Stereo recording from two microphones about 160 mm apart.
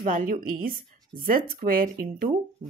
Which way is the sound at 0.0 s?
55° right (ahead or behind).